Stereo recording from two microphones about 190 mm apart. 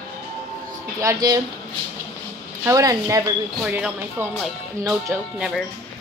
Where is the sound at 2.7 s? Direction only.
15° right (ahead or behind).